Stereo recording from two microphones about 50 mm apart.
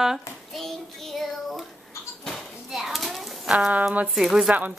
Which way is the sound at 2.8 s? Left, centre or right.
Centre.